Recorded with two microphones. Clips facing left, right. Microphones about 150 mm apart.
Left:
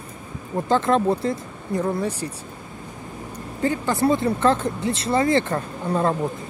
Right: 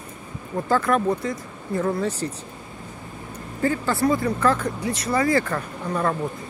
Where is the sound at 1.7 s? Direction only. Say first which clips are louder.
Even; 15° left (ahead or behind).